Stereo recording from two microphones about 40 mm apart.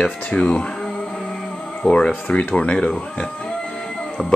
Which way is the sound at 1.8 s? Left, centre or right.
Left.